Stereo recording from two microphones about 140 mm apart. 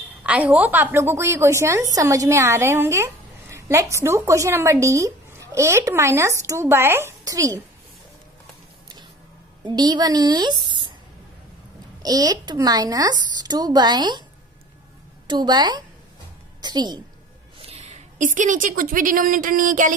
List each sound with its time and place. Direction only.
0.2 s a woman's voice: 10° right (ahead or behind)
9.7 s a woman's voice: 30° right (ahead or behind)
12.0 s a woman's voice: 25° right (ahead or behind)
15.2 s a woman's voice: 30° right (ahead or behind)
17.6 s a woman's voice: 50° right (ahead or behind); by 19.9 s 70° right (ahead or behind)